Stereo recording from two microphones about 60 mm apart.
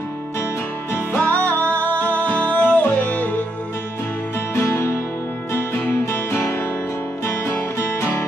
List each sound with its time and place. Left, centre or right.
0.9 s music: left
4.6 s music: left
7.5 s music: left